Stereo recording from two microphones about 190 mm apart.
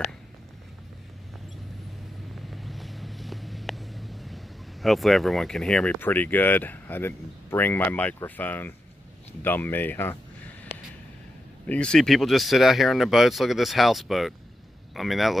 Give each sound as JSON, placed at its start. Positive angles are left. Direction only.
{"t": 2.5, "sound": "vehicle", "side_deg": 0}
{"t": 9.4, "sound": "speech", "side_deg": 10}
{"t": 11.6, "sound": "speech", "side_deg": 5}